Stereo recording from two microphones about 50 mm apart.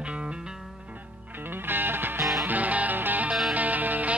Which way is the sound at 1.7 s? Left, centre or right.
Right.